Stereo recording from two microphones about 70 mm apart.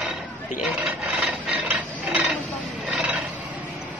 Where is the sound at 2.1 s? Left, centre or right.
Centre.